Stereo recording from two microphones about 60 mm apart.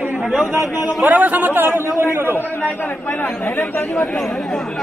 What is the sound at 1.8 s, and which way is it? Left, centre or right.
Speech, right.